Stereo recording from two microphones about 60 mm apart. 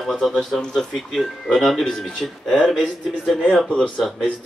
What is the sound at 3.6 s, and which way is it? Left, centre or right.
Speech, centre.